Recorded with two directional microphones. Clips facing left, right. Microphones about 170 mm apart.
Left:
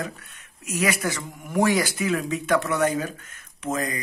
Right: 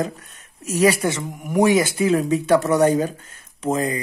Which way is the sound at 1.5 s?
20° right (ahead or behind).